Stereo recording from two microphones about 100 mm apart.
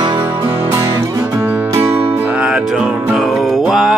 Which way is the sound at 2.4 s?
5° right (ahead or behind).